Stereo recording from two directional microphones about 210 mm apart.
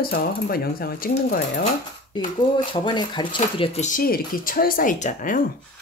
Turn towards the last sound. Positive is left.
turn(degrees=40)  # may be behind; listen again after turning